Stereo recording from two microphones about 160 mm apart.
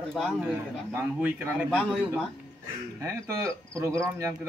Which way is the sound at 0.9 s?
15° right (ahead or behind).